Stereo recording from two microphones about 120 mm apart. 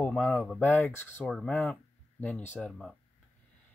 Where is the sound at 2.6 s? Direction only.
Centre (ahead or behind).